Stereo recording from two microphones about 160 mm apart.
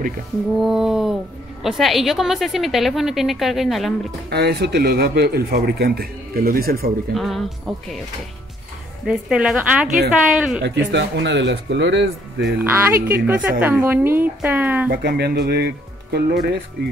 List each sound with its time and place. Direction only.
0.6 s a woman's voice: centre (ahead or behind)
4.3 s speech: 90° right; by 6.9 s 65° right (ahead or behind)
7.2 s a woman's voice: centre (ahead or behind)
9.0 s a woman's voice: 5° right (ahead or behind)
10.6 s speech: 90° right
12.5 s a woman's voice: 15° right (ahead or behind)
14.9 s speech: 80° right